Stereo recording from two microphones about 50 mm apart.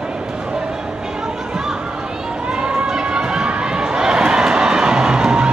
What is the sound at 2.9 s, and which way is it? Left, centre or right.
Crowd, centre.